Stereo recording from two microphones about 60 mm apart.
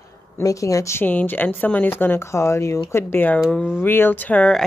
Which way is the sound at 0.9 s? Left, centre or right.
Left.